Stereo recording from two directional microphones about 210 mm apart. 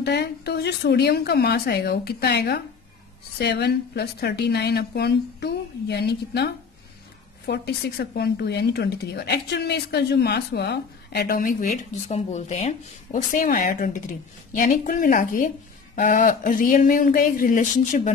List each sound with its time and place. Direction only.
0.0 s speech: 50° left (ahead or behind)